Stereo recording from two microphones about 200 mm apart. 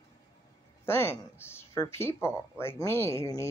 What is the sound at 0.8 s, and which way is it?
Speech, 10° left (ahead or behind).